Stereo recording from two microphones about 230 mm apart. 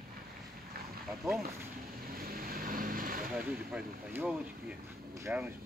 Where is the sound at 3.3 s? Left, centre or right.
Centre.